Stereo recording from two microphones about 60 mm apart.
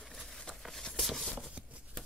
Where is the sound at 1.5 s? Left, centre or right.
Right.